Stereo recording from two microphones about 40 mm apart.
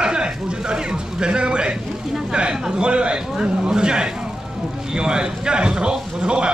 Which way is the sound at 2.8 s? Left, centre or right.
Right.